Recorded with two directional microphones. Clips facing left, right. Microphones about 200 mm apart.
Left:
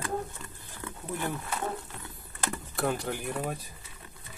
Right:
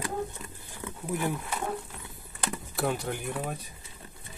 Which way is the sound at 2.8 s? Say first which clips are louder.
Even; centre (ahead or behind).